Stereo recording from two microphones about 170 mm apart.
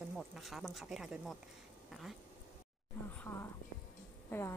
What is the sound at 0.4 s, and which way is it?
Speech, centre (ahead or behind).